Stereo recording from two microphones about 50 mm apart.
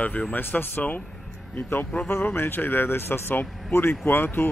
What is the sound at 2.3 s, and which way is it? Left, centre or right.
Speech, left.